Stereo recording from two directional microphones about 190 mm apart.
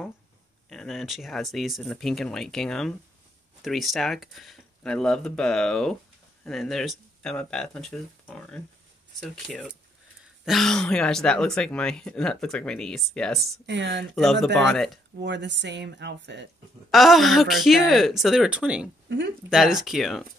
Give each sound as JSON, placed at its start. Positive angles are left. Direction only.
{"t": 0.7, "sound": "speech", "side_deg": 0}
{"t": 13.7, "sound": "speech", "side_deg": -65}
{"t": 14.1, "sound": "speech", "side_deg": 0}
{"t": 15.1, "sound": "speech", "side_deg": -70}
{"t": 16.9, "sound": "speech", "side_deg": 0}